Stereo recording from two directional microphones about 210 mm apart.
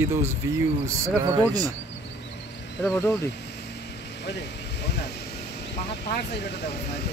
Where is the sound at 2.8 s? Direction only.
15° left (ahead or behind).